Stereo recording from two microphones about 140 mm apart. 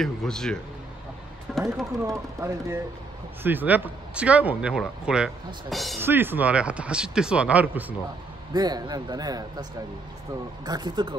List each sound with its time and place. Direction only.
0.0 s speech: 5° left (ahead or behind)
2.0 s speech: 20° right (ahead or behind); by 5.9 s centre (ahead or behind)
5.9 s speech: 15° right (ahead or behind)
8.5 s speech: 30° right (ahead or behind)